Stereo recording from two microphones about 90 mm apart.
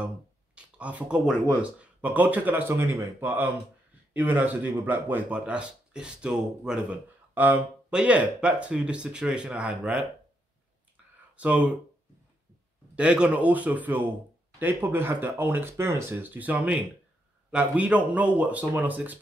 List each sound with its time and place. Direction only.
0.6 s speech: 15° right (ahead or behind)
7.3 s speech: 20° right (ahead or behind)
11.3 s speech: 15° right (ahead or behind)
12.9 s speech: 10° right (ahead or behind)